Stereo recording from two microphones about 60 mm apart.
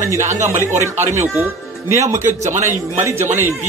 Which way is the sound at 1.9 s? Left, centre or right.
Right.